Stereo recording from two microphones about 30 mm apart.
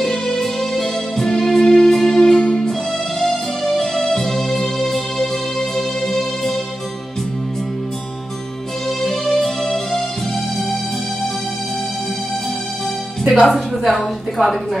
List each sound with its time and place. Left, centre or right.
0.0 s music: centre
2.7 s music: centre
8.8 s music: centre
13.3 s a woman's voice: centre